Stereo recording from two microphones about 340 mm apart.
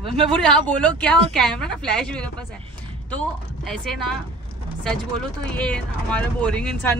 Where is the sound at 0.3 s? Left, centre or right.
Centre.